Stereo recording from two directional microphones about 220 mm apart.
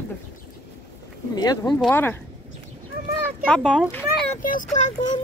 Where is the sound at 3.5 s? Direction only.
Centre (ahead or behind).